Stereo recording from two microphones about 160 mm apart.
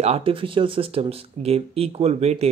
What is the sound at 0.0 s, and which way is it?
Speech, 40° right (ahead or behind).